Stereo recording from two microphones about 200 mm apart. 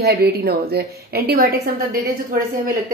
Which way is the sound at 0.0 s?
50° right (ahead or behind).